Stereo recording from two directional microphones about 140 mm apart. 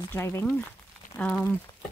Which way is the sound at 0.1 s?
20° left (ahead or behind).